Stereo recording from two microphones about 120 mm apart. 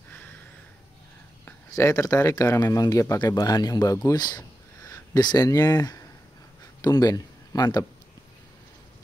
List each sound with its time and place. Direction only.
1.4 s speech: 25° left (ahead or behind)